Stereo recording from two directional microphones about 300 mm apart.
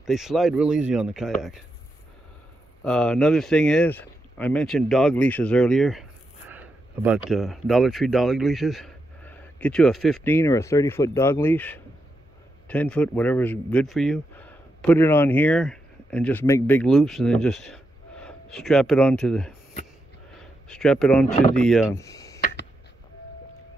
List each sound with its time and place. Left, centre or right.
0.0 s speech: centre
2.8 s a man's voice: centre
20.3 s a sound: centre
21.3 s speech: left
21.5 s speech: centre